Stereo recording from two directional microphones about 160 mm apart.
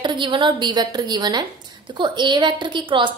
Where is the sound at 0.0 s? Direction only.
30° right (ahead or behind).